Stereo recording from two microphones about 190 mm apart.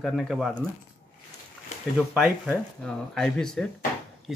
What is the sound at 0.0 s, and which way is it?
Speech, centre (ahead or behind).